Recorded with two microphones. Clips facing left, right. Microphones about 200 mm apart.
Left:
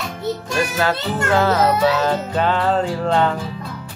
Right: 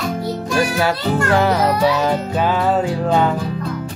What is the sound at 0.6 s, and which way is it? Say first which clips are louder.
Music: right 3 dB; 10° right (ahead or behind).